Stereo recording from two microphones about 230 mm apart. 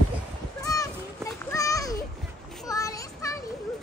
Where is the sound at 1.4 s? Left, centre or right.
Centre.